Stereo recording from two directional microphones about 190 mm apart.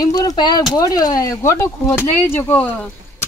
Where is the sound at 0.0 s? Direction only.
20° left (ahead or behind).